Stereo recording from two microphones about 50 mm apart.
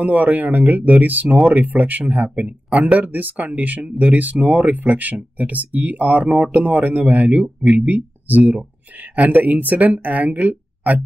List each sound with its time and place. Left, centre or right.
0.0 s speech: right